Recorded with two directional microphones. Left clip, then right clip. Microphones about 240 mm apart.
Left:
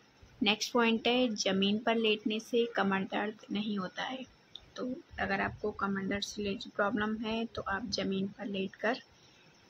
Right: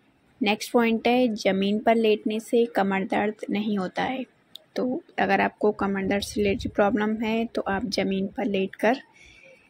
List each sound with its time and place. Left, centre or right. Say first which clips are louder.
0.4 s speech: right 6 dB; centre